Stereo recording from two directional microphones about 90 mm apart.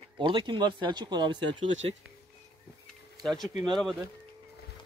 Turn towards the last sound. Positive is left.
turn(degrees=0)  # may be behind; listen again after turning